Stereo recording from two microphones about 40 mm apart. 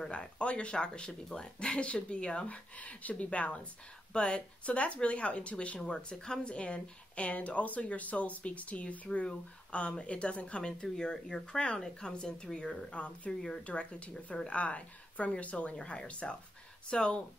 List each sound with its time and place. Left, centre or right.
0.4 s speech: left
5.8 s speech: centre
13.3 s speech: centre
13.7 s speech: left